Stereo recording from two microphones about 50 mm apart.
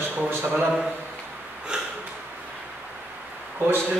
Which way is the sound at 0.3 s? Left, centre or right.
Right.